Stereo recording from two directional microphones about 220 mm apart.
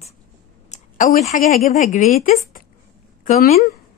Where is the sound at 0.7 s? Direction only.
35° left (ahead or behind).